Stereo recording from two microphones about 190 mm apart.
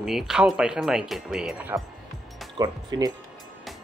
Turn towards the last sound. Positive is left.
turn(degrees=-20)  # may be behind; listen again after turning